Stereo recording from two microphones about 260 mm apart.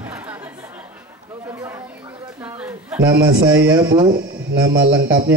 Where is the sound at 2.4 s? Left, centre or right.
Centre.